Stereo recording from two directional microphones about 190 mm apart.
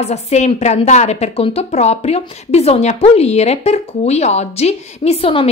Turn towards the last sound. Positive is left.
turn(degrees=30)  # may be behind; listen again after turning